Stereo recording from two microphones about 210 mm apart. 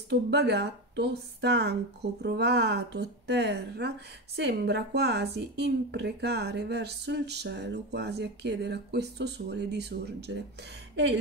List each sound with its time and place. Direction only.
0.1 s a woman's voice: 50° right (ahead or behind)